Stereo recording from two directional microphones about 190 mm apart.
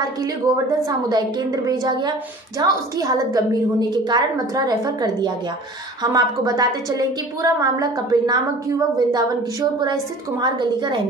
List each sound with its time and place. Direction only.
0.8 s a woman's voice: 20° right (ahead or behind)